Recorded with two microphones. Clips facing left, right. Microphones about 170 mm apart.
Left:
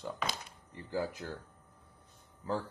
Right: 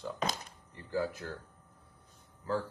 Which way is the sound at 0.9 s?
20° left (ahead or behind).